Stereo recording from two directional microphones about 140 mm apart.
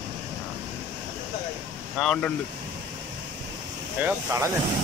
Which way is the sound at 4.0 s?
20° right (ahead or behind).